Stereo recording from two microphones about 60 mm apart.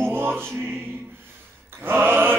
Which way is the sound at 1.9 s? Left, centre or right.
Right.